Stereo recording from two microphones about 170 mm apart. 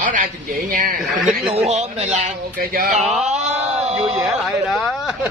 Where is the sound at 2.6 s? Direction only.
60° right (ahead or behind).